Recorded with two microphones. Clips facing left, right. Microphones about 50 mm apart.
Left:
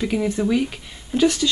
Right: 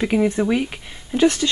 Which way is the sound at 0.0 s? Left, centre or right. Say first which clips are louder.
Right 3 dB; right.